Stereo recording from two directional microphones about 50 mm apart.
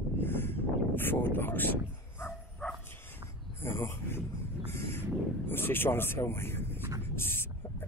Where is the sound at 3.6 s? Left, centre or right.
Left.